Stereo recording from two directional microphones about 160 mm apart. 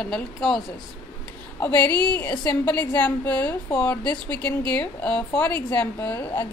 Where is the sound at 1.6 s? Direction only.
10° left (ahead or behind).